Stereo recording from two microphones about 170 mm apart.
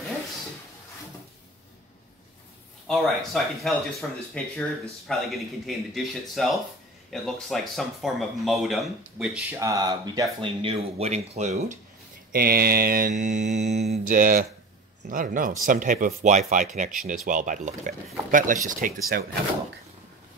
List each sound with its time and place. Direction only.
2.9 s speech: centre (ahead or behind)
9.6 s speech: 20° right (ahead or behind); by 11.8 s 45° right (ahead or behind)
12.3 s mantra: 65° right (ahead or behind)
13.1 s speech: 45° right (ahead or behind)